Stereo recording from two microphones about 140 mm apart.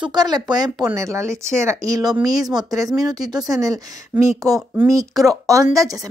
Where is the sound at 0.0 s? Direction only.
30° right (ahead or behind).